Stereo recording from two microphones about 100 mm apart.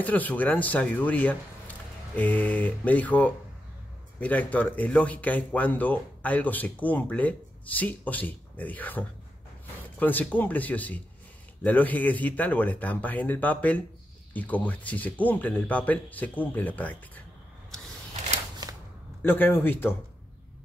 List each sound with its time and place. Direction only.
0.0 s speech: 15° left (ahead or behind)
19.2 s speech: 20° left (ahead or behind)